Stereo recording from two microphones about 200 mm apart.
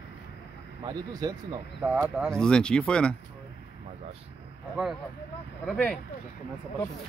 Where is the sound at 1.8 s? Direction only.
5° right (ahead or behind).